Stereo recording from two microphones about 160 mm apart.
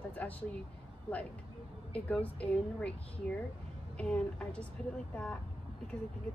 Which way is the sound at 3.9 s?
5° left (ahead or behind).